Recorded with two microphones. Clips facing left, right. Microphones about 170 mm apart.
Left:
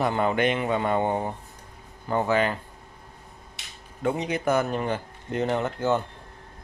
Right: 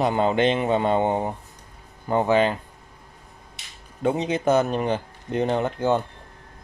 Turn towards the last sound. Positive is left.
turn(degrees=-15)  # may be behind; listen again after turning